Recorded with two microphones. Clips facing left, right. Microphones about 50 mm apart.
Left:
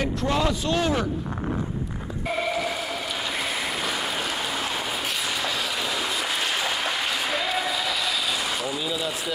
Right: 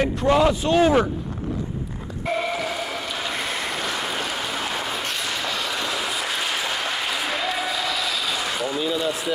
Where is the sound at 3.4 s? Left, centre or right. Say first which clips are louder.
Right 1 dB; centre.